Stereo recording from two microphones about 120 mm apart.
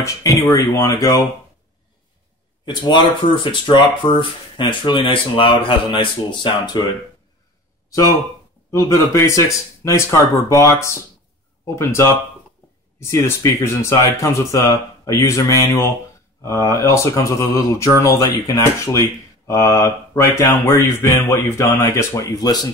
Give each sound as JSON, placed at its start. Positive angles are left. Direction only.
{"t": 0.0, "sound": "speech", "side_deg": 25}
{"t": 2.6, "sound": "speech", "side_deg": 40}
{"t": 7.9, "sound": "speech", "side_deg": 30}